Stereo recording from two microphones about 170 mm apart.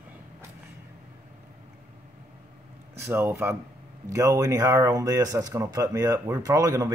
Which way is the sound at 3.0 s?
15° right (ahead or behind).